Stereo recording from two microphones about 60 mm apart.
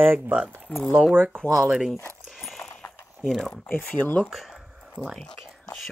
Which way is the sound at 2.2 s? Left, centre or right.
Centre.